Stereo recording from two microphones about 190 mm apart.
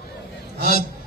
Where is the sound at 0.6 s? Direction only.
55° left (ahead or behind).